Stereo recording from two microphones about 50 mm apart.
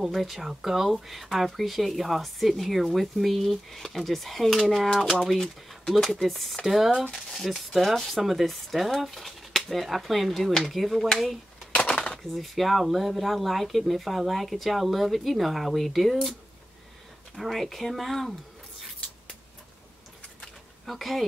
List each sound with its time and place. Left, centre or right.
0.0 s speech: centre
7.2 s speech: centre
11.7 s dishes: left
12.0 s speech: centre
17.4 s speech: centre
20.8 s speech: centre